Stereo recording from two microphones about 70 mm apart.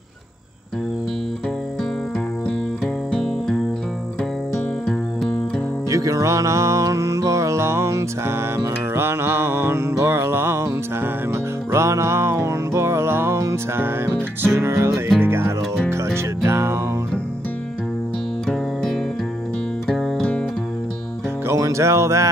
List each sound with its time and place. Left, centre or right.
3.1 s music: centre
5.9 s music: right
11.7 s music: right
19.9 s music: centre
21.5 s music: right